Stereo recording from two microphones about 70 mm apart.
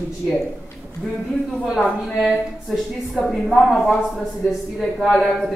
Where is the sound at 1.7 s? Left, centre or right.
Centre.